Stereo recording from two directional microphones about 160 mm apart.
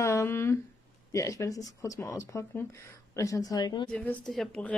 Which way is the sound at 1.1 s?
20° left (ahead or behind).